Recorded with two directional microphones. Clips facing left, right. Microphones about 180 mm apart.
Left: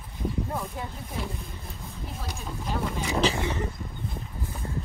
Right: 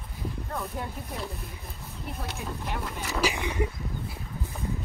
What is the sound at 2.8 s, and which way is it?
Speech, 5° right (ahead or behind).